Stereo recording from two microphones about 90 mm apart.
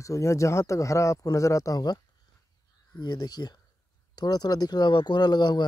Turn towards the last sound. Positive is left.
turn(degrees=50)  # may be behind; listen again after turning